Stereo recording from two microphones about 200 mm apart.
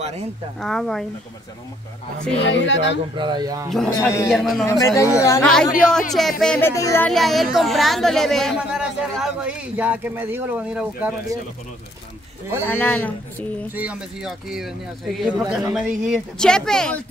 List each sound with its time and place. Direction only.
0.0 s speech: 30° right (ahead or behind)
0.6 s speech: centre (ahead or behind)
2.4 s speech: 65° left (ahead or behind)
3.2 s speech: 20° right (ahead or behind)
3.7 s speech: centre (ahead or behind)
4.6 s speech: 15° left (ahead or behind)
5.4 s speech: 5° left (ahead or behind)
7.1 s speech: centre (ahead or behind)
12.6 s speech: 10° left (ahead or behind)
13.7 s speech: 5° right (ahead or behind)